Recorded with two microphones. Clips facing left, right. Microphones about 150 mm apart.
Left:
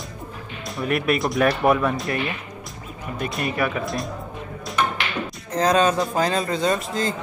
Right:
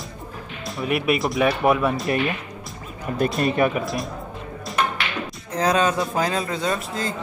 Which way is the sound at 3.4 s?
20° right (ahead or behind).